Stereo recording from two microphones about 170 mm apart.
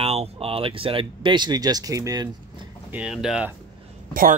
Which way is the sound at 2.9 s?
5° right (ahead or behind).